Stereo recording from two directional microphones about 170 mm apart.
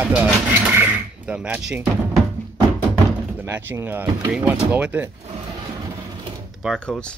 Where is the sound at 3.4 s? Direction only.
10° right (ahead or behind).